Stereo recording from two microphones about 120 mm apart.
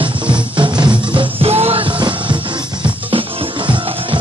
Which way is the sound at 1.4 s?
60° right (ahead or behind).